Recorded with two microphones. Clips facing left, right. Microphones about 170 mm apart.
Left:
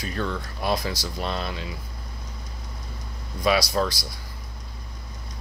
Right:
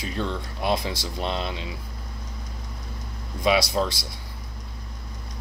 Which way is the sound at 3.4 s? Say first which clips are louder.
Even; 25° right (ahead or behind).